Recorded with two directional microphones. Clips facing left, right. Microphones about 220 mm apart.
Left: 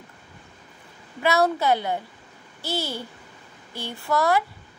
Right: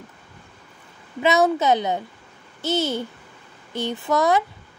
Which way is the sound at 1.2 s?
20° right (ahead or behind).